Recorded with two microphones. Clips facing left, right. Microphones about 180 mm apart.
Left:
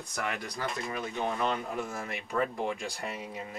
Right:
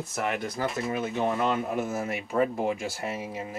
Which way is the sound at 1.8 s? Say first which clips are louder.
Right 7 dB; 5° right (ahead or behind).